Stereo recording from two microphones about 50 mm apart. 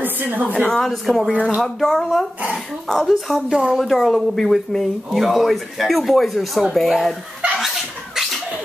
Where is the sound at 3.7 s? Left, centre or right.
Centre.